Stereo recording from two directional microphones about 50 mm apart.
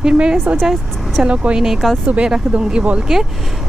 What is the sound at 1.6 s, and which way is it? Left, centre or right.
Speech, centre.